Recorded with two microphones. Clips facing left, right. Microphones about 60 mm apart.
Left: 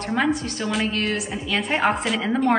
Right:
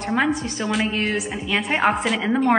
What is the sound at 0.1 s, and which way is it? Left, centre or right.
A woman's voice, centre.